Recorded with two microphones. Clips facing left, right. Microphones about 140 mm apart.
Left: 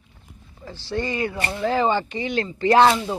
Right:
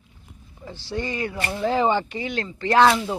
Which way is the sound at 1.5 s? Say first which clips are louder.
Right 1 dB; 15° right (ahead or behind).